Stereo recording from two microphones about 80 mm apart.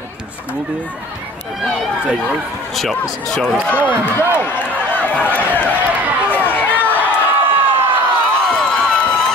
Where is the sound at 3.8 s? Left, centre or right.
Right.